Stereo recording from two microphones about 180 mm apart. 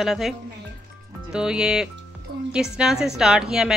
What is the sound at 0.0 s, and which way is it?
Speech, centre (ahead or behind).